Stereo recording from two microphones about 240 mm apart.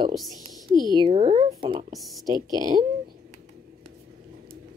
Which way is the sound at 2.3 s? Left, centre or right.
Centre.